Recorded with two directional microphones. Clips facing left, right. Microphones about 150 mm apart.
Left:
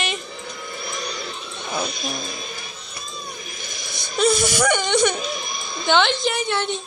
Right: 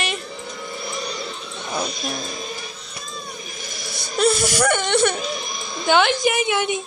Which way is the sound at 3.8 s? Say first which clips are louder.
Right 2 dB; 35° right (ahead or behind).